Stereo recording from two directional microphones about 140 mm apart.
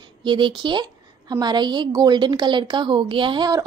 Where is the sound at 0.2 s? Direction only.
35° right (ahead or behind).